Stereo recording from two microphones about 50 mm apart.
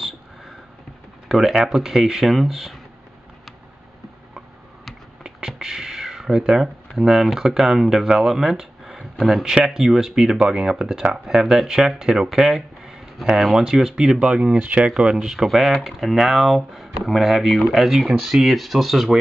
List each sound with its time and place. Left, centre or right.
1.3 s speech: centre
4.8 s computer keyboard: centre
6.4 s speech: centre
14.2 s speech: centre
14.6 s speech: right
15.0 s speech: centre